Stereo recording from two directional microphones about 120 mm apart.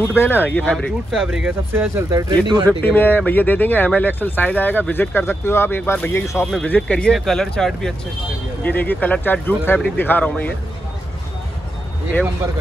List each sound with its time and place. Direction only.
0.1 s speech: 15° left (ahead or behind)
1.1 s speech: 5° right (ahead or behind)
1.7 s speech: 20° right (ahead or behind)
2.8 s speech: 15° left (ahead or behind)
6.4 s speech: 10° left (ahead or behind)